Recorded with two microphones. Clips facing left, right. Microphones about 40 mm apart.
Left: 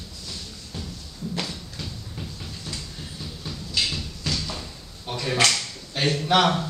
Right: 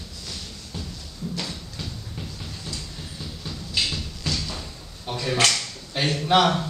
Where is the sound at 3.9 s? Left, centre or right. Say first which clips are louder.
Even; centre.